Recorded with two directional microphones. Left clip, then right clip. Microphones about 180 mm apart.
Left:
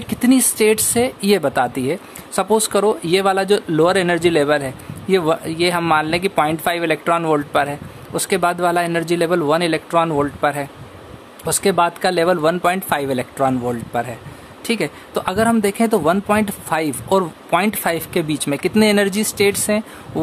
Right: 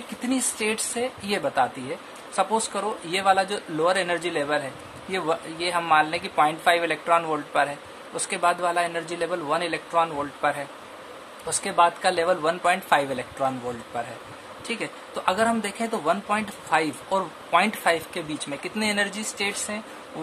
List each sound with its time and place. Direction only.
0.3 s speech: 50° left (ahead or behind)